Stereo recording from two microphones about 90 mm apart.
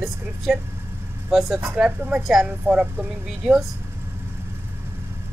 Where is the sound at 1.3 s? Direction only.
Centre (ahead or behind).